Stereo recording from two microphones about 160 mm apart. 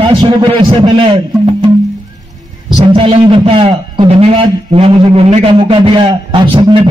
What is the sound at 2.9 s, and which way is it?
A man's voice, 35° right (ahead or behind).